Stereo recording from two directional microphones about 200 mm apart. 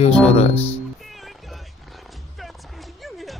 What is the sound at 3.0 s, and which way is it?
Music, centre (ahead or behind).